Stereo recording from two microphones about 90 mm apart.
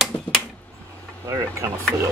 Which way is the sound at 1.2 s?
35° right (ahead or behind).